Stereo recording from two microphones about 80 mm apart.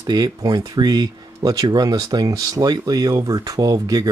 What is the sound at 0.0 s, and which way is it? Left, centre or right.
Speech, right.